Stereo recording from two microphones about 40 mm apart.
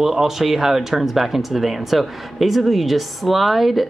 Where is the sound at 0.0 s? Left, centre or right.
Centre.